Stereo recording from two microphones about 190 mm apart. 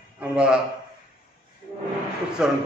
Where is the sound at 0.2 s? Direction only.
5° right (ahead or behind).